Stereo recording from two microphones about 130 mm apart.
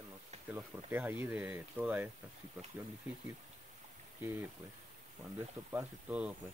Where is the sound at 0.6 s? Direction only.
15° right (ahead or behind).